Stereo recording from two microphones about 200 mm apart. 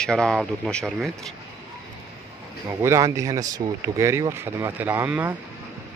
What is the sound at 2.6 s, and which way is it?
Speech, 15° right (ahead or behind).